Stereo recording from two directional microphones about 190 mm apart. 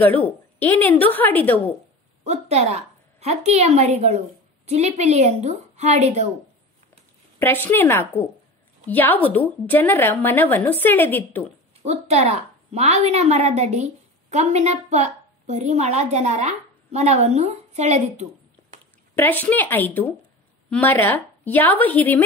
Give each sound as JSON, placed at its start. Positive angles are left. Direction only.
{"t": 0.0, "sound": "a woman's voice", "side_deg": 10}
{"t": 2.2, "sound": "a woman's voice", "side_deg": -35}
{"t": 7.3, "sound": "a woman's voice", "side_deg": 10}
{"t": 11.8, "sound": "a woman's voice", "side_deg": -35}
{"t": 19.1, "sound": "a woman's voice", "side_deg": 10}